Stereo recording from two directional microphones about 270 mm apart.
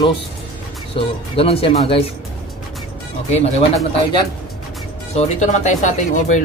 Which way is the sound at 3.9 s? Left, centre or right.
Centre.